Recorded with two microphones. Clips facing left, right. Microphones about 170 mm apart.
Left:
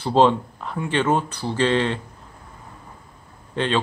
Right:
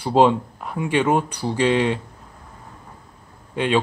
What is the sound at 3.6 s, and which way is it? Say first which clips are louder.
Speech: right 1 dB; 10° right (ahead or behind).